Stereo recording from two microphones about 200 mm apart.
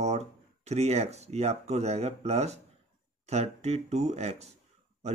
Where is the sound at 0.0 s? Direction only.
35° right (ahead or behind).